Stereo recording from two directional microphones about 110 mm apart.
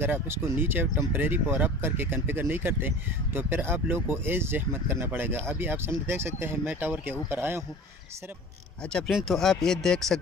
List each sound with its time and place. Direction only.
0.0 s speech: 20° right (ahead or behind)
8.8 s speech: 5° left (ahead or behind)